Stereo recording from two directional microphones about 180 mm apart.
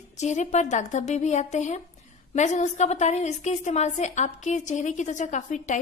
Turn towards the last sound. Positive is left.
turn(degrees=40)  # may be behind; listen again after turning